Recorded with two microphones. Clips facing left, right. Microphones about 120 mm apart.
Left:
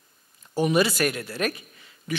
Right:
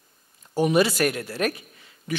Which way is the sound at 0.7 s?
50° right (ahead or behind).